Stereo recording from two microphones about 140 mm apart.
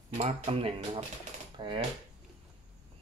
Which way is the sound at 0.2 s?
45° right (ahead or behind).